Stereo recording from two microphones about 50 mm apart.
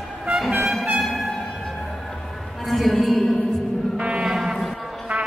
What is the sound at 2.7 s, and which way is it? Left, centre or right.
Music, centre.